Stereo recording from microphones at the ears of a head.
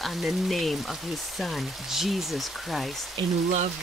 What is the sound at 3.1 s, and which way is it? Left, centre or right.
Speech, right.